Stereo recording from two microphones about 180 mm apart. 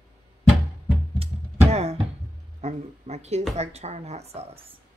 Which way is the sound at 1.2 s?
30° right (ahead or behind).